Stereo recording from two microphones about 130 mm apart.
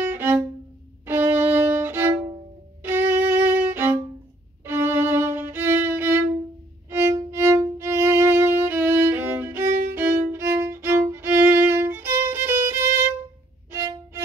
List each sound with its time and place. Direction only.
0.0 s music: 15° right (ahead or behind)
1.0 s violin: 15° right (ahead or behind)